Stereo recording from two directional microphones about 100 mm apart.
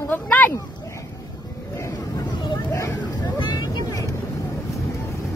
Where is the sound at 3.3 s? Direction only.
45° left (ahead or behind).